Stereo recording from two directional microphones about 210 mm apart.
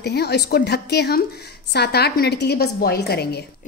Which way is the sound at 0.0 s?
50° left (ahead or behind).